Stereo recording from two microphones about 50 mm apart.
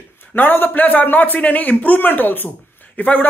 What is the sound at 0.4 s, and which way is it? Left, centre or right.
Speech, left.